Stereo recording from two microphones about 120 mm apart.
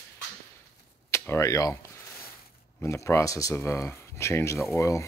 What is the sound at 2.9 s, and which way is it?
Speech, 25° left (ahead or behind).